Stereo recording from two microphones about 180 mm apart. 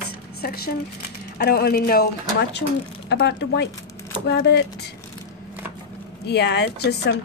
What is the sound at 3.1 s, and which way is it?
A woman's voice, 70° left (ahead or behind).